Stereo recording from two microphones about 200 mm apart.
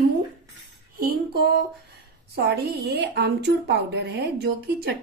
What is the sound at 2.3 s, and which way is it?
A woman's voice, 55° right (ahead or behind).